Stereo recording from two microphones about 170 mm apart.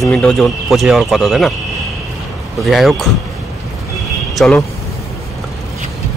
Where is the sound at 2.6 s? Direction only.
Centre (ahead or behind).